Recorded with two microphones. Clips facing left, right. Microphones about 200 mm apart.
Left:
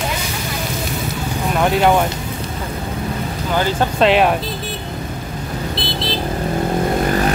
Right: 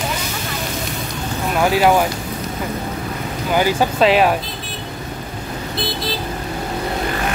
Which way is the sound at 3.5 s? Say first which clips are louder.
Right 1 dB; 10° right (ahead or behind).